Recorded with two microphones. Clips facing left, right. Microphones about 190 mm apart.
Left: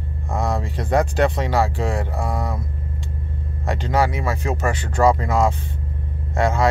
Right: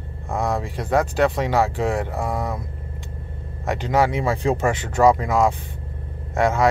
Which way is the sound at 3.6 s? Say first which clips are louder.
Right 1 dB; 20° right (ahead or behind).